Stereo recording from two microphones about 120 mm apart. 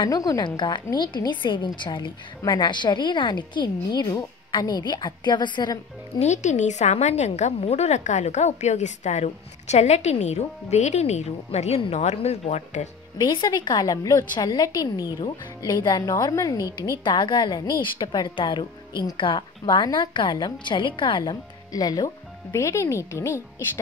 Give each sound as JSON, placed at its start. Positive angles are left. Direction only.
{"t": 0.0, "sound": "speech", "side_deg": 30}
{"t": 6.1, "sound": "a woman's voice", "side_deg": 75}
{"t": 13.2, "sound": "speech", "side_deg": 40}
{"t": 16.6, "sound": "a woman's voice", "side_deg": -25}
{"t": 17.0, "sound": "speech", "side_deg": 40}